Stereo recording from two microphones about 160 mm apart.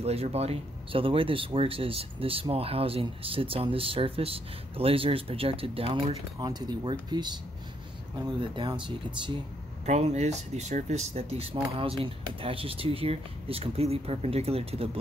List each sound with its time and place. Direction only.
0.0 s speech: 40° right (ahead or behind)
8.4 s speech: 30° right (ahead or behind)
9.8 s speech: 45° right (ahead or behind)